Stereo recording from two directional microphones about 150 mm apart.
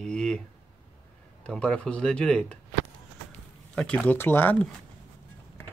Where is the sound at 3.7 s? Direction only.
5° left (ahead or behind).